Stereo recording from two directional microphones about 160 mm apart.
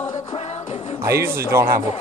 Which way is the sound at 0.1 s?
40° left (ahead or behind).